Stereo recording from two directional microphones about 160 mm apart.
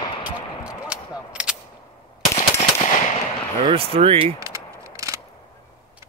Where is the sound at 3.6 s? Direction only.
35° right (ahead or behind).